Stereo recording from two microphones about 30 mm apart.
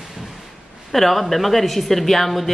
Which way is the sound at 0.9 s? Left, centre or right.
Centre.